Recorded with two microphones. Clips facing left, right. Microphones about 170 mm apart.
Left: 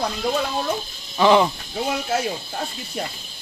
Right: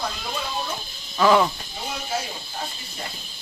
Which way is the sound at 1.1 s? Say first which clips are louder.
Left 2 dB; 20° left (ahead or behind).